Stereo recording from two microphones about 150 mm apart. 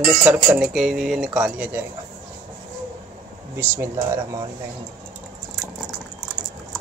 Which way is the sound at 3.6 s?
15° right (ahead or behind).